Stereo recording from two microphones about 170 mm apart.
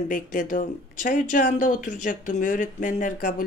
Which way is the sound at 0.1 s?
50° left (ahead or behind).